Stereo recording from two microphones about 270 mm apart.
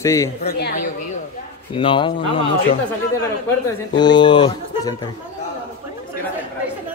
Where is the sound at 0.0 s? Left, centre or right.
Centre.